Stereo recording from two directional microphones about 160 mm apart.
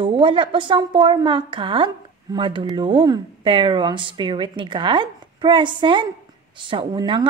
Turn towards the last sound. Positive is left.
turn(degrees=-30)  # may be behind; listen again after turning